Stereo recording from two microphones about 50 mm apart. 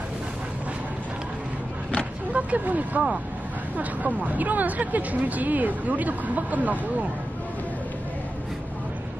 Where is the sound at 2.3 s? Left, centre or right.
Right.